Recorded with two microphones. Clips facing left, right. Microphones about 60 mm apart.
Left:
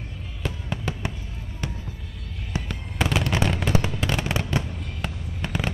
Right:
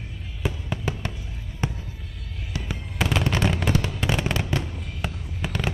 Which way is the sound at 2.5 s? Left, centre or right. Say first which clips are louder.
Left 3 dB; left.